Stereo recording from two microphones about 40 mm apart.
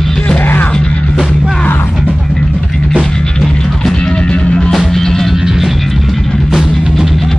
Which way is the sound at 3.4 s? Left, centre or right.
Centre.